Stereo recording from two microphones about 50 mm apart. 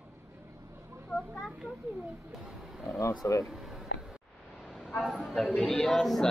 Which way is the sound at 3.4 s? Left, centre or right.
Centre.